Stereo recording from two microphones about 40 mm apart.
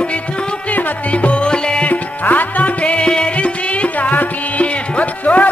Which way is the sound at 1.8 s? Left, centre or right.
Left.